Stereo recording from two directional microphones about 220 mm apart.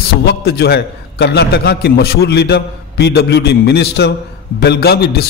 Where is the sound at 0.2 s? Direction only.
50° left (ahead or behind).